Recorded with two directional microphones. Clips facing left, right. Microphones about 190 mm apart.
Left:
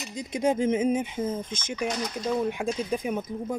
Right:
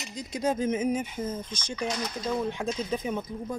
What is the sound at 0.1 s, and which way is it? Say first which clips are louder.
Speech: left 3 dB; 25° left (ahead or behind).